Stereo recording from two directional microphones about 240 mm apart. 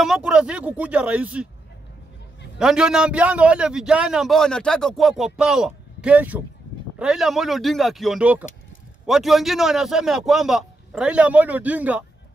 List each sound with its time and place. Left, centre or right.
0.0 s a man's voice: centre
2.6 s a man's voice: centre